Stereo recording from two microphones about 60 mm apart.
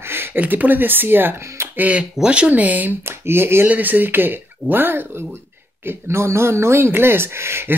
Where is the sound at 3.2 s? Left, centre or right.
Right.